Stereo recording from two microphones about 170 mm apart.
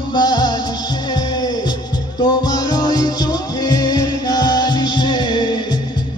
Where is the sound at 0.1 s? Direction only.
25° left (ahead or behind).